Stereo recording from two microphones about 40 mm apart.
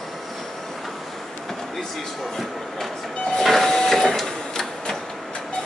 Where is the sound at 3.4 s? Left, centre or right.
Centre.